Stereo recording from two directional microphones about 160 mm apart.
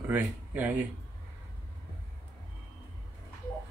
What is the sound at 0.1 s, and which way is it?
Speech, 10° right (ahead or behind).